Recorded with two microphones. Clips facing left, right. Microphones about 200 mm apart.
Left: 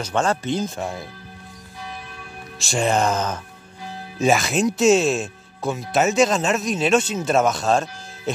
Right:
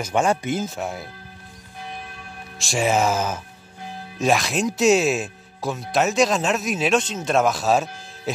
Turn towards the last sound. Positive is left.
turn(degrees=-5)  # may be behind; listen again after turning